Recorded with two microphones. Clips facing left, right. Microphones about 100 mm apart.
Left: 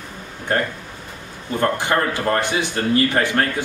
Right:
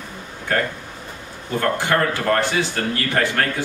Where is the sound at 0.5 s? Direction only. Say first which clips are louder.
Left 1 dB; 30° left (ahead or behind).